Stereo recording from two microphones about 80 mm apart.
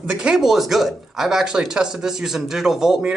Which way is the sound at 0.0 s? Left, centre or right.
Centre.